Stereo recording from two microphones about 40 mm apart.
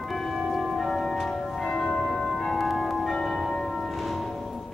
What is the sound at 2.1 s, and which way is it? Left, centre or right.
Church bell, centre.